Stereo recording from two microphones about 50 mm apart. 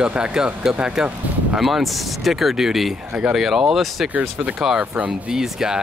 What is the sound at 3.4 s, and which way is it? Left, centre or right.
Speech, centre.